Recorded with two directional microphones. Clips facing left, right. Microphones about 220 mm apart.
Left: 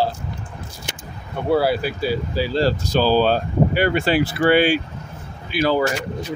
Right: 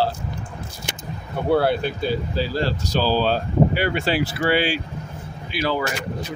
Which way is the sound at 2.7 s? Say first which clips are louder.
Left 4 dB; 50° left (ahead or behind).